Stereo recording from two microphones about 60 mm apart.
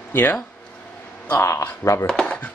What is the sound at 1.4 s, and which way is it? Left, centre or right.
Speech, left.